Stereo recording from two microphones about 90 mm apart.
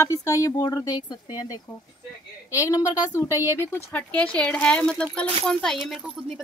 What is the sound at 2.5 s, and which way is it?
Speech, 35° left (ahead or behind).